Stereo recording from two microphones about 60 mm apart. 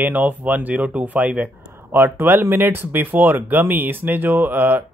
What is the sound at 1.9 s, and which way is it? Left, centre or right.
Speech, right.